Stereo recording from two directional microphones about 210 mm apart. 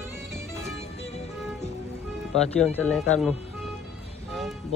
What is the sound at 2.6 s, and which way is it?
Speech, 5° left (ahead or behind).